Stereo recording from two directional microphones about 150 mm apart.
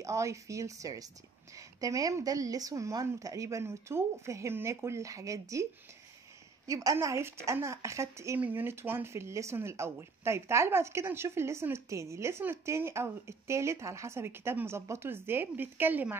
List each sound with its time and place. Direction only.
0.0 s a woman's voice: 20° right (ahead or behind)
6.7 s a woman's voice: 20° right (ahead or behind)